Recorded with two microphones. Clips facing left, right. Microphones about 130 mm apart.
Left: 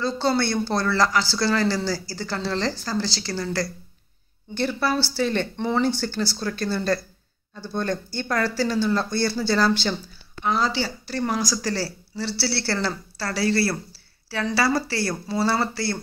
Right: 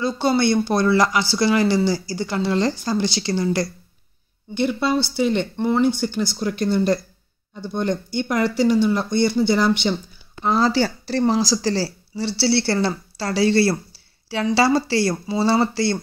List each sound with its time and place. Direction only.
0.0 s speech: 15° right (ahead or behind)
10.5 s speech: 40° right (ahead or behind); by 16.0 s 20° right (ahead or behind)